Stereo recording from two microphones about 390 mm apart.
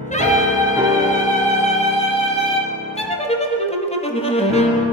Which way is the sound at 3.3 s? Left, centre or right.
Centre.